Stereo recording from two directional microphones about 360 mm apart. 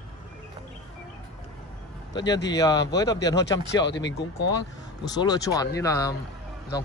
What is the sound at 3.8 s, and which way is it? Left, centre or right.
Speech, left.